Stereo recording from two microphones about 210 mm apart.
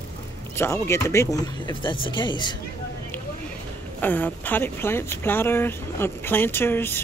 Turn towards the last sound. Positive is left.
turn(degrees=10)  # may be behind; listen again after turning